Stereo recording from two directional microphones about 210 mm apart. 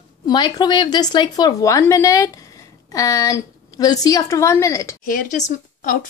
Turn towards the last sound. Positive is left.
turn(degrees=40)  # may be behind; listen again after turning